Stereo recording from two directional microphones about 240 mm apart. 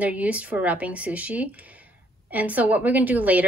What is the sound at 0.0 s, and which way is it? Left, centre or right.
A woman's voice, centre.